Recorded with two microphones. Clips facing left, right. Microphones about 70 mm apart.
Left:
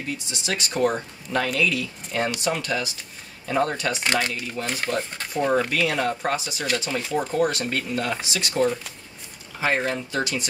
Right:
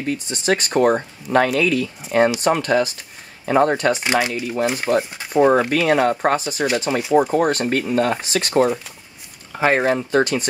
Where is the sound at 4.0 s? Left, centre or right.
Centre.